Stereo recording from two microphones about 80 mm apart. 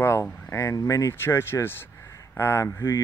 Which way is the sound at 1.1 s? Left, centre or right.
Left.